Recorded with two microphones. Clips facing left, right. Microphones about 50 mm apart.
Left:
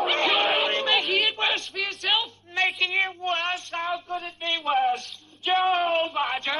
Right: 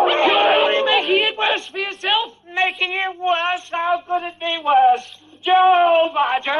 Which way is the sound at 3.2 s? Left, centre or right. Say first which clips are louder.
Right 8 dB; right.